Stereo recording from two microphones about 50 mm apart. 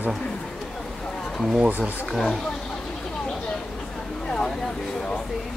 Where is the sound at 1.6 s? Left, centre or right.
Right.